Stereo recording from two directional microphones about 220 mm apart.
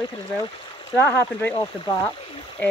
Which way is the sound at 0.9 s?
10° left (ahead or behind).